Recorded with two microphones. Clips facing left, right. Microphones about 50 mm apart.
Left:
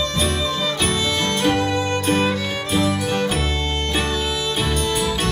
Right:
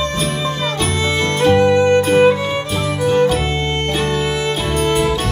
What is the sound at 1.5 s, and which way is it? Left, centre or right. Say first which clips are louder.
Music: right 9 dB; right.